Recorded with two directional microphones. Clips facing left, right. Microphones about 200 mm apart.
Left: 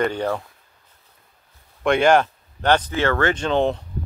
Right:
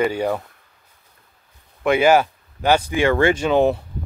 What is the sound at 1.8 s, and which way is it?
Speech, 5° right (ahead or behind).